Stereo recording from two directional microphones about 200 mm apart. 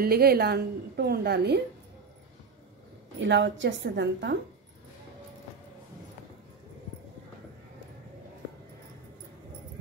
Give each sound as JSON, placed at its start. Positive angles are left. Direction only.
{"t": 0.0, "sound": "a woman's voice", "side_deg": -50}
{"t": 3.2, "sound": "a woman's voice", "side_deg": -65}